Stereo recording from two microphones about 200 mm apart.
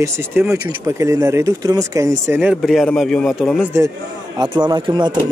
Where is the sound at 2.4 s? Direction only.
5° right (ahead or behind).